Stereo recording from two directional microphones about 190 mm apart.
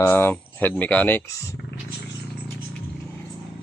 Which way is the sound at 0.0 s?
10° left (ahead or behind).